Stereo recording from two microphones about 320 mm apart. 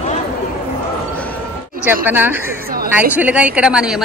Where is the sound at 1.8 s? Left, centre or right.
Centre.